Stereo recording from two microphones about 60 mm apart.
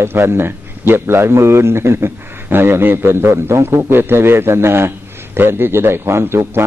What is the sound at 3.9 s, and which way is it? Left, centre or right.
A man's voice, right.